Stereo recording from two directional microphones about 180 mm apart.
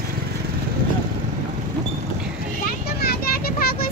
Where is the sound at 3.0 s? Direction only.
60° left (ahead or behind).